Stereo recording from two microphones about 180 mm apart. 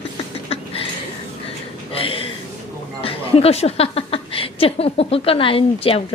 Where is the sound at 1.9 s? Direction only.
30° left (ahead or behind).